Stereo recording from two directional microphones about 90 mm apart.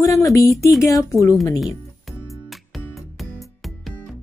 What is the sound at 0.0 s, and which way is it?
Speech, 35° left (ahead or behind).